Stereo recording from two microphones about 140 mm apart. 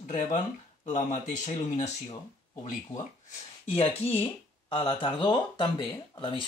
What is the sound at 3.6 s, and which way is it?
Speech, 50° left (ahead or behind).